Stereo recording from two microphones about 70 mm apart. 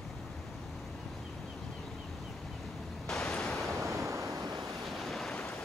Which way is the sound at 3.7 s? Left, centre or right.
Right.